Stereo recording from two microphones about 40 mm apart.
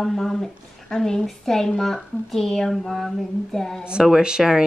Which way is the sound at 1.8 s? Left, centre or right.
Centre.